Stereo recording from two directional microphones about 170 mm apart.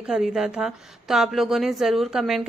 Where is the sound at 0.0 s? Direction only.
5° right (ahead or behind).